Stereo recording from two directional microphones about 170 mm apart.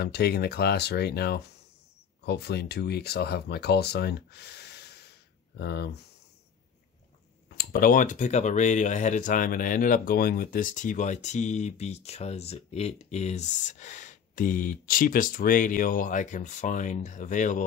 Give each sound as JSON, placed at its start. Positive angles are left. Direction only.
{"t": 0.0, "sound": "speech", "side_deg": 70}
{"t": 7.4, "sound": "speech", "side_deg": 60}